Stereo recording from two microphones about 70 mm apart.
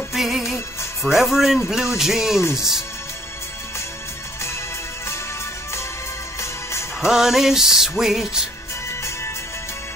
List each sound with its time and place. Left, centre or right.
0.1 s music: centre
2.5 s speech: centre
6.4 s music: left
7.0 s music: centre